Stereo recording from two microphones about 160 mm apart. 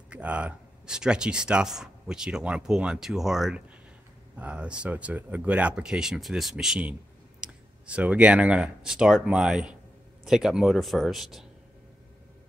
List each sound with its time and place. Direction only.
0.1 s speech: 10° right (ahead or behind)